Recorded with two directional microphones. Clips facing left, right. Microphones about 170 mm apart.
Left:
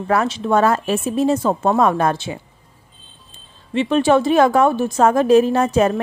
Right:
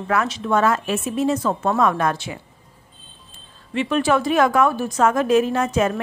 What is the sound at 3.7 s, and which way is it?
A woman's voice, 25° left (ahead or behind).